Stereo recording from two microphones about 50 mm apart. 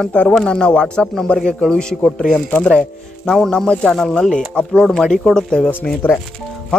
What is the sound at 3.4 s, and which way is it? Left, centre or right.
Speech, centre.